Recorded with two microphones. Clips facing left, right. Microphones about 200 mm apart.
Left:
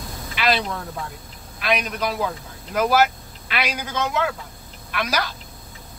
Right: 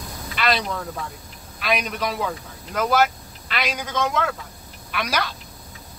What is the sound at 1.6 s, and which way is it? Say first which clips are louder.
A woman's voice: left 1 dB; centre (ahead or behind).